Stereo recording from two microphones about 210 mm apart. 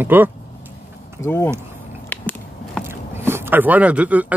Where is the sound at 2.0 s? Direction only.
10° left (ahead or behind).